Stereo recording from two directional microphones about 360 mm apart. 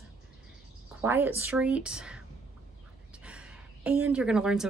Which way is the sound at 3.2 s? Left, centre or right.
Centre.